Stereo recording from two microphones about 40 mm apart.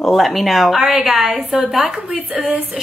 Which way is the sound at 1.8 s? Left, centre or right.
Right.